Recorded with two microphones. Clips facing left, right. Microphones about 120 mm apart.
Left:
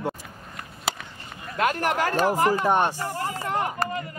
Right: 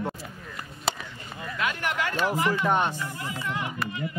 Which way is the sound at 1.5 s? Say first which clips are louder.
Left 6 dB; 40° left (ahead or behind).